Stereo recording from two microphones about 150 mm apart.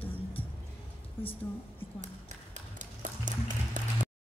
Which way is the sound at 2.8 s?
60° right (ahead or behind).